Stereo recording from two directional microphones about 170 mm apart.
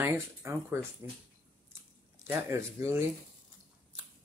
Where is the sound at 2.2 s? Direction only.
15° right (ahead or behind).